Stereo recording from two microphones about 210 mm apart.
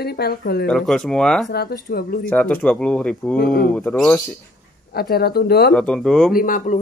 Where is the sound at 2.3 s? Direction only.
5° left (ahead or behind).